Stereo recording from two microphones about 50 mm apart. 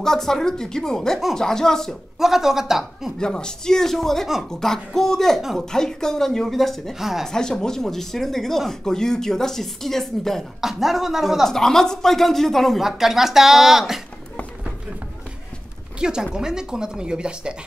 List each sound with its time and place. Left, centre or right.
0.0 s speech: centre
2.1 s speech: centre
3.2 s speech: centre
7.2 s speech: centre
10.6 s speech: centre
11.4 s speech: centre
12.8 s speech: centre
16.0 s speech: centre